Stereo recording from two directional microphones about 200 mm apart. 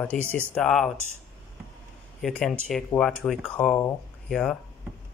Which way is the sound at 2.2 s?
Centre (ahead or behind).